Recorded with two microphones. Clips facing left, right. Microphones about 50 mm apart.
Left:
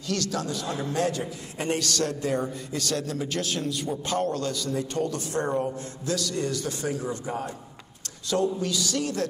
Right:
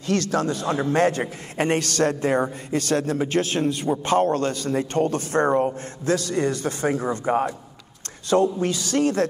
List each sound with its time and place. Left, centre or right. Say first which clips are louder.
0.0 s a man's voice: right 7 dB; right